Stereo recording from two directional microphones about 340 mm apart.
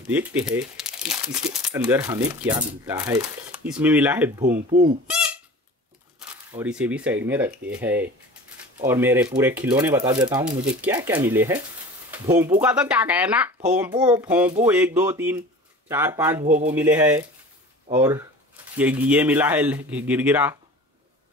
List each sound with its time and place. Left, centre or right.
0.1 s speech: centre
4.5 s speech: right
5.0 s a sound: centre
6.1 s speech: centre
16.4 s speech: right
16.7 s speech: centre